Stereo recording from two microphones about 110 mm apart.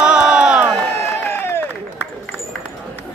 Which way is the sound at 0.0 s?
5° right (ahead or behind).